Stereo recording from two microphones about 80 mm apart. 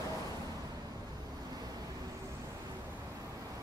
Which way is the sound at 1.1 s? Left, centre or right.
Right.